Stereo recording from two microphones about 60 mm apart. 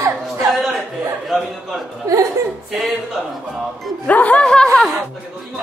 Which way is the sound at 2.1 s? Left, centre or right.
Right.